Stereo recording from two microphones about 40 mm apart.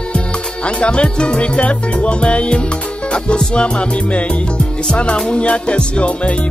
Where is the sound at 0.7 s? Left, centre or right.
Left.